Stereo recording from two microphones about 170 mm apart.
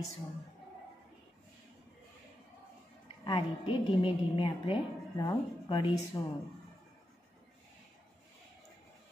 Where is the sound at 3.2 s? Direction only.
30° left (ahead or behind).